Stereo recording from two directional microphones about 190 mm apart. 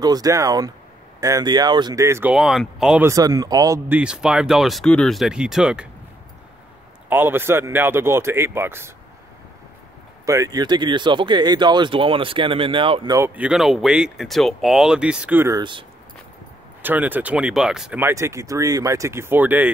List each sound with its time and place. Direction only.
0.0 s speech: 20° right (ahead or behind)
2.3 s speech: centre (ahead or behind)
3.1 s speech: 20° right (ahead or behind)
4.0 s speech: 5° right (ahead or behind)
7.1 s speech: 10° right (ahead or behind)
10.2 s speech: 15° right (ahead or behind)
13.3 s speech: 5° right (ahead or behind)
16.8 s speech: 10° right (ahead or behind)